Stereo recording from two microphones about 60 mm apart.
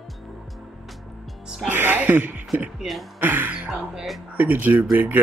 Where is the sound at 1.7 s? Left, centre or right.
Right.